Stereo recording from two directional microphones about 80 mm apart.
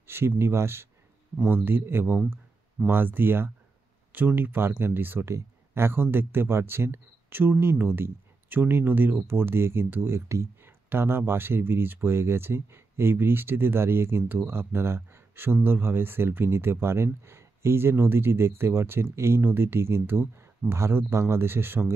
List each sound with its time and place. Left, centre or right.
0.0 s speech: right